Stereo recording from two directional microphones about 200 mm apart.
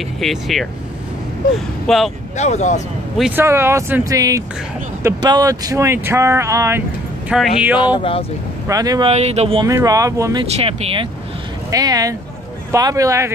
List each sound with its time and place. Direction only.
0.2 s speech: centre (ahead or behind)
1.9 s speech: centre (ahead or behind)
2.3 s speech: 35° left (ahead or behind)
3.2 s speech: 10° right (ahead or behind)
7.2 s speech: centre (ahead or behind)
7.8 s speech: 25° left (ahead or behind)
8.6 s speech: 20° right (ahead or behind)
9.1 s speech: 30° right (ahead or behind)
9.7 s speech: 15° right (ahead or behind)
10.5 s speech: 30° right (ahead or behind)
11.7 s speech: 20° right (ahead or behind)